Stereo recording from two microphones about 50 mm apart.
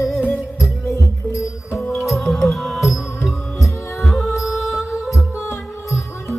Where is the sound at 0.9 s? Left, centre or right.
Left.